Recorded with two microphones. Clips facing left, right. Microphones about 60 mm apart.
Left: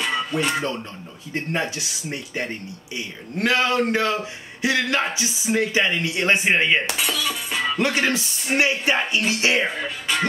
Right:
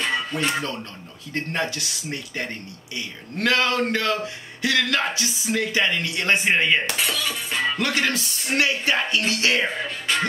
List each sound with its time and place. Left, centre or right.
0.0 s music: centre
1.3 s speech: centre
7.0 s music: centre
7.8 s speech: left